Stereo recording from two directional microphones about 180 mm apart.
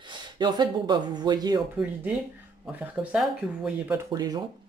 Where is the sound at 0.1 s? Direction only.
25° right (ahead or behind).